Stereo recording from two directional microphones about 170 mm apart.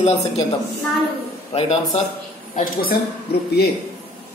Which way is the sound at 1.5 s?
35° left (ahead or behind).